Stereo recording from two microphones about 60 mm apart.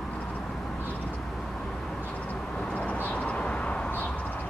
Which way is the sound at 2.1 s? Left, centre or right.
Left.